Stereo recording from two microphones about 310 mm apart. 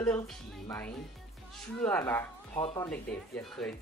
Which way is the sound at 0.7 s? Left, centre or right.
Centre.